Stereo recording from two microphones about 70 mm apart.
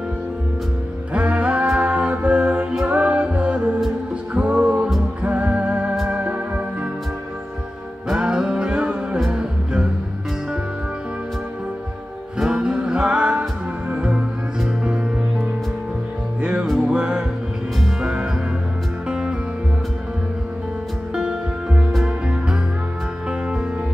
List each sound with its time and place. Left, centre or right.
1.1 s music: centre
8.1 s music: centre
12.4 s music: centre
16.3 s music: centre
21.1 s music: centre